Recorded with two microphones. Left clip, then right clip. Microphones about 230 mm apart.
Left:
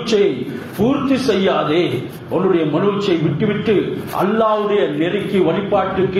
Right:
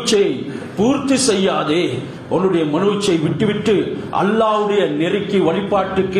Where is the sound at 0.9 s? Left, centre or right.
Right.